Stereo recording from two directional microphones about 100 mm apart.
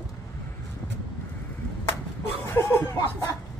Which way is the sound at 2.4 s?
25° left (ahead or behind).